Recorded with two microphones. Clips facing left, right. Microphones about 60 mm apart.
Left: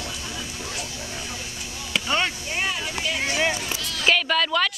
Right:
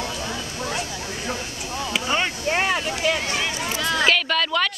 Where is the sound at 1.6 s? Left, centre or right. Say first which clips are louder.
Right 7 dB; right.